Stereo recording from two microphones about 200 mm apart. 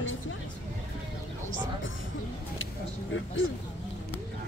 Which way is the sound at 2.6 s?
75° left (ahead or behind).